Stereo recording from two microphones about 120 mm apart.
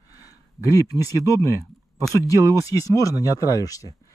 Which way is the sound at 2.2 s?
30° left (ahead or behind).